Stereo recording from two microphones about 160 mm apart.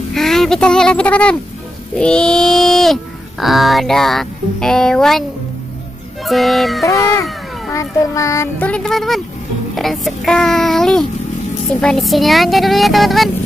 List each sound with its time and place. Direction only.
0.1 s speech: centre (ahead or behind)
6.2 s speech: centre (ahead or behind)
7.7 s child singing: 20° left (ahead or behind); by 9.2 s centre (ahead or behind)
9.8 s speech: centre (ahead or behind)